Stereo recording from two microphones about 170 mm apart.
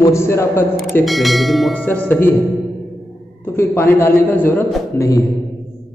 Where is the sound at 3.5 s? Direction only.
15° left (ahead or behind).